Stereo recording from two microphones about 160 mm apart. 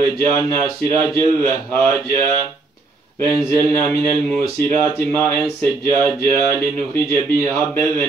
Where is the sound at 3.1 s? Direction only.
20° left (ahead or behind).